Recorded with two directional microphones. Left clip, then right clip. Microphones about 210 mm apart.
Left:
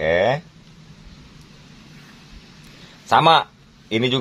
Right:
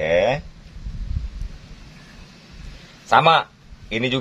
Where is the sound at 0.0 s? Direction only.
50° left (ahead or behind).